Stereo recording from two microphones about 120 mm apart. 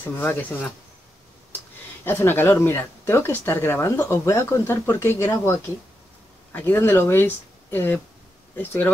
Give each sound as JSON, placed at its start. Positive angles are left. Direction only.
{"t": 0.2, "sound": "speech", "side_deg": 15}
{"t": 2.0, "sound": "speech", "side_deg": 20}